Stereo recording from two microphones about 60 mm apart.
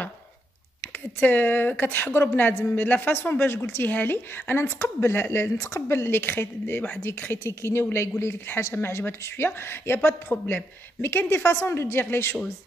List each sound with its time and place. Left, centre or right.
0.7 s a woman's voice: left
3.8 s a woman's voice: left